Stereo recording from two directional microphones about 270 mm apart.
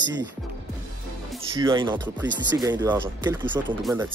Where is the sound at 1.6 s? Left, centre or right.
Centre.